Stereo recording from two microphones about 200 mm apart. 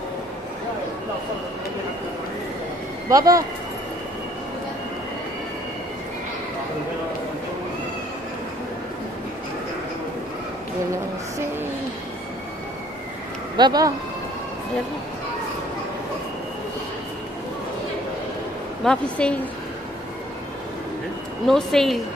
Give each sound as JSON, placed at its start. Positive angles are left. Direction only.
{"t": 3.1, "sound": "speech", "side_deg": -15}
{"t": 13.6, "sound": "speech", "side_deg": -20}
{"t": 18.9, "sound": "speech", "side_deg": 5}
{"t": 21.5, "sound": "speech", "side_deg": 0}